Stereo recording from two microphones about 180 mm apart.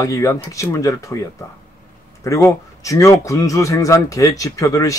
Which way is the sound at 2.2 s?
15° left (ahead or behind).